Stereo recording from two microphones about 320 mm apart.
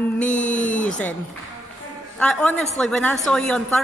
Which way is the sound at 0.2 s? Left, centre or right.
Left.